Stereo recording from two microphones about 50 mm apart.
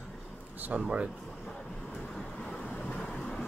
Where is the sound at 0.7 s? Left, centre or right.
Right.